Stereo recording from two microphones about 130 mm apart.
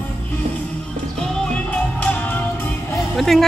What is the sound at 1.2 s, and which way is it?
Music, 10° left (ahead or behind).